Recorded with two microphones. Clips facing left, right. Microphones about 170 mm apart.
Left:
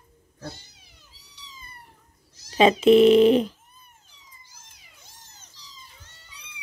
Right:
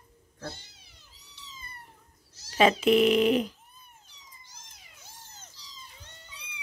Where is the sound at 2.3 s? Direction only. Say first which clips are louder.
Left 4 dB; 20° left (ahead or behind).